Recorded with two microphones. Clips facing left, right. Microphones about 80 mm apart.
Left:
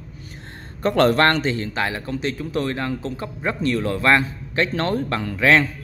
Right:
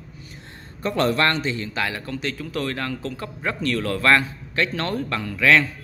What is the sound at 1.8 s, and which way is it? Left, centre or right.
A man's voice, left.